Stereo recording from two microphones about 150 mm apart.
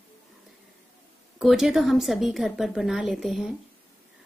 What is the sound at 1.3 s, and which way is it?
Speech, 5° right (ahead or behind).